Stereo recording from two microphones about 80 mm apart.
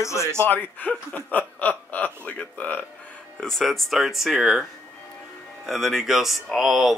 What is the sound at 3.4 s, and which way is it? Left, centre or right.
Speech, centre.